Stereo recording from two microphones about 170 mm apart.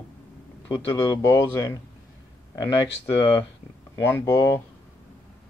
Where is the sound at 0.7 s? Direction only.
20° left (ahead or behind).